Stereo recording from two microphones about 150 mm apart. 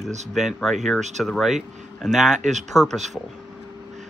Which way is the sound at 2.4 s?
50° right (ahead or behind).